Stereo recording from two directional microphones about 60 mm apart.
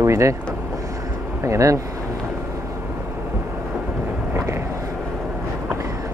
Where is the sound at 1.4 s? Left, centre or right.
Right.